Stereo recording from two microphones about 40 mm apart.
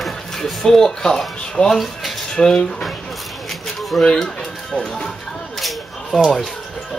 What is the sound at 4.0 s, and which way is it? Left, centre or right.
Speech, centre.